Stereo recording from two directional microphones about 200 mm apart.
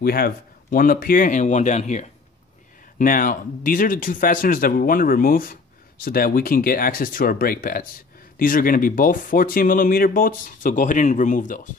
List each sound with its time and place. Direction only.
0.0 s speech: 50° left (ahead or behind)